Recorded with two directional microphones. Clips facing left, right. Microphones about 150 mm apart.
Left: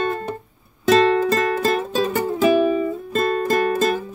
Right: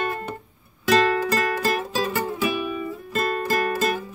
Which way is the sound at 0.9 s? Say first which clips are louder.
Left 4 dB; 30° left (ahead or behind).